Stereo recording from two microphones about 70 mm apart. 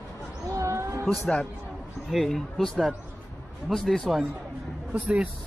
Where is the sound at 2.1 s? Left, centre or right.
Centre.